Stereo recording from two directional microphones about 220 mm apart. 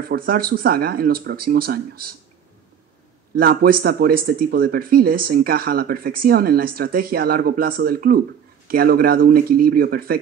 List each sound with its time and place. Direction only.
0.0 s speech: 40° right (ahead or behind)
3.3 s speech: 40° right (ahead or behind)